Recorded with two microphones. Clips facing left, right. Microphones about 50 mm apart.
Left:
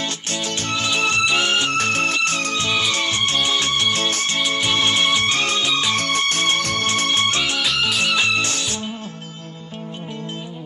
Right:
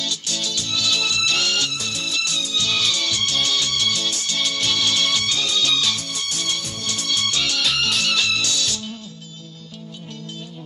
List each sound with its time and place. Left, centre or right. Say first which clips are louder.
0.0 s music: left 2 dB; left
1.7 s music: left 8 dB; left
4.5 s music: left 3 dB; left
5.6 s music: left 1 dB; left
5.9 s music: left 9 dB; left
6.6 s music: left 10 dB; left
6.9 s music: left 2 dB; left
7.6 s music: left 1 dB; centre
8.0 s music: left 3 dB; centre